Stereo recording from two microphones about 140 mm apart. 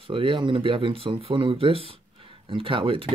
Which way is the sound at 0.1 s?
40° right (ahead or behind).